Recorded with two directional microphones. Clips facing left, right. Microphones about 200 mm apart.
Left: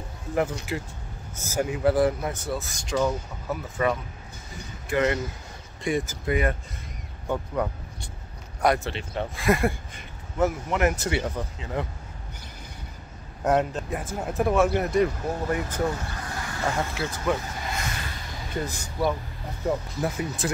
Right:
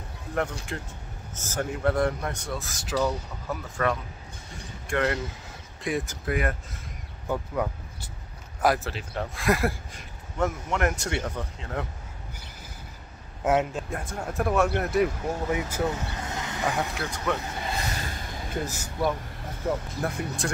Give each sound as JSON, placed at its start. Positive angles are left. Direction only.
{"t": 0.3, "sound": "speech", "side_deg": 5}
{"t": 13.4, "sound": "speech", "side_deg": -5}
{"t": 15.9, "sound": "vehicle", "side_deg": -20}
{"t": 16.9, "sound": "speech", "side_deg": 5}
{"t": 17.6, "sound": "a sound", "side_deg": -35}
{"t": 18.5, "sound": "speech", "side_deg": -5}